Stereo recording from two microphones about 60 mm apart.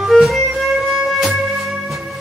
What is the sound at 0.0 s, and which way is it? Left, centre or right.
Music, centre.